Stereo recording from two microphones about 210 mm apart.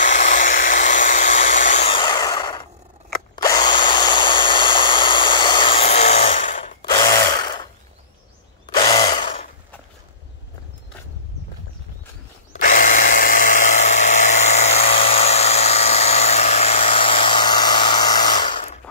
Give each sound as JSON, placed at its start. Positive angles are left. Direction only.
{"t": 0.0, "sound": "a sound", "side_deg": 35}
{"t": 3.3, "sound": "drill", "side_deg": 20}
{"t": 6.8, "sound": "tools", "side_deg": 20}
{"t": 8.7, "sound": "drill", "side_deg": 20}
{"t": 12.5, "sound": "drill", "side_deg": 40}